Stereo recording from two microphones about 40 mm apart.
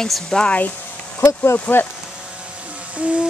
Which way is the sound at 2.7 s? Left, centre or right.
Right.